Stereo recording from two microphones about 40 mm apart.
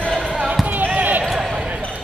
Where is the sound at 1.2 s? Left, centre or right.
Centre.